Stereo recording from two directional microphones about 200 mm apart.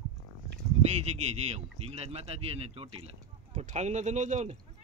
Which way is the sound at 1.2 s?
30° right (ahead or behind).